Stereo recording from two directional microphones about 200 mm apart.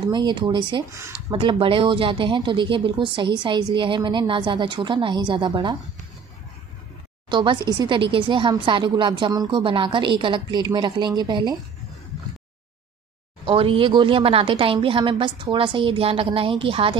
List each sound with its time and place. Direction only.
0.1 s speech: 20° right (ahead or behind)
7.2 s speech: 25° right (ahead or behind)
13.5 s speech: 25° right (ahead or behind)